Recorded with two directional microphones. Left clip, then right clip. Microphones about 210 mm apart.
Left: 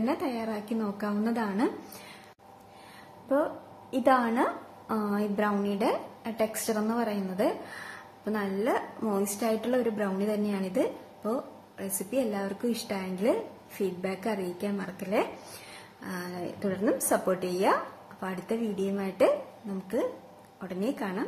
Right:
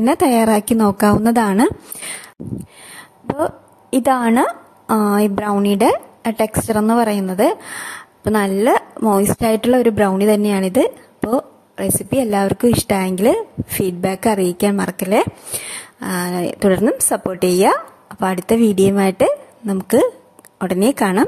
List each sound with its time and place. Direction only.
0.0 s a woman's voice: 50° right (ahead or behind)
4.0 s a woman's voice: 50° right (ahead or behind)
20.5 s a woman's voice: 50° right (ahead or behind)